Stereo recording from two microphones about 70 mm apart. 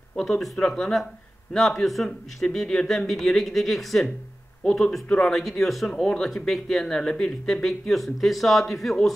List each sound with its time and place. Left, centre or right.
0.1 s speech: centre
5.3 s speech: centre